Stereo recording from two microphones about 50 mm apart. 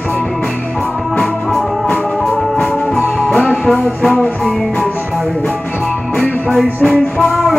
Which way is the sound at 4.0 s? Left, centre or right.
Centre.